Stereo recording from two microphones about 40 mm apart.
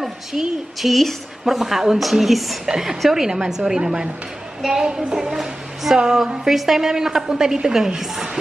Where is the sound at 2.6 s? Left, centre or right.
Centre.